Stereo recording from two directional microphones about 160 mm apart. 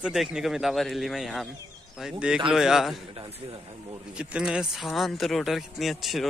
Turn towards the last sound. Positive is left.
turn(degrees=0)  # may be behind; listen again after turning